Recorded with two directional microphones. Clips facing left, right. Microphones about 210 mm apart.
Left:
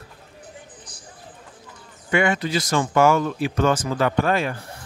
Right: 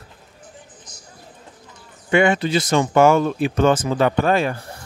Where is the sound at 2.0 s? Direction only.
25° right (ahead or behind).